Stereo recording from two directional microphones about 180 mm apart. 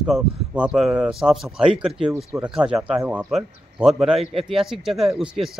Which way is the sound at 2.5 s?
5° right (ahead or behind).